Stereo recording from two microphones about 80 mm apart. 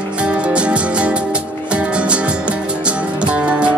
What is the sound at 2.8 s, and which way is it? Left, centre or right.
Music, centre.